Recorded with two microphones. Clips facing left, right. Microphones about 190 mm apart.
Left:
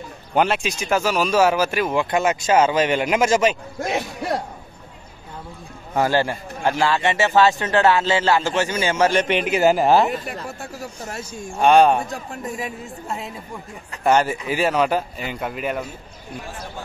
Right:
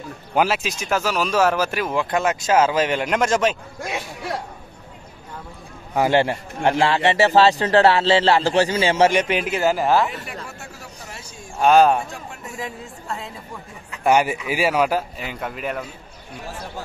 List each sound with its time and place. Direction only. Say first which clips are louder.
0.3 s speech: left 1 dB; 5° right (ahead or behind)
6.0 s a man's voice: right 4 dB; 20° right (ahead or behind)
9.1 s speech: left 1 dB; 5° right (ahead or behind)
9.6 s speech: left 3 dB; 20° left (ahead or behind)
11.6 s speech: even; centre (ahead or behind)
12.5 s speech: left 2 dB; 20° left (ahead or behind)
14.0 s speech: even; 10° right (ahead or behind); by 15.8 s 5° left (ahead or behind)